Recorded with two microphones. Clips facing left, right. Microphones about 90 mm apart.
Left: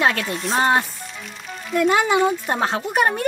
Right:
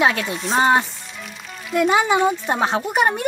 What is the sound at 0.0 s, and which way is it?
A woman's voice, 5° right (ahead or behind).